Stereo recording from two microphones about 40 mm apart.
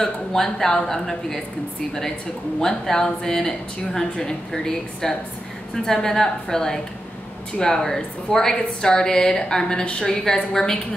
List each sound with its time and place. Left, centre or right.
0.0 s a woman's voice: centre
2.6 s a woman's voice: centre